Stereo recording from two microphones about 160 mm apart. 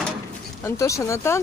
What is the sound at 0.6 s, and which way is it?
Speech, 20° left (ahead or behind).